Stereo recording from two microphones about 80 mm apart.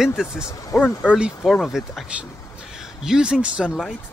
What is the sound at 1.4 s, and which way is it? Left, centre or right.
Speech, centre.